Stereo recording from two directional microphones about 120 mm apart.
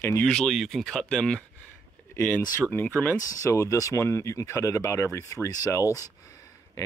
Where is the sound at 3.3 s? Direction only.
25° left (ahead or behind).